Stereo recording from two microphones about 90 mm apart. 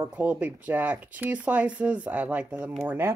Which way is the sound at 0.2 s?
15° right (ahead or behind).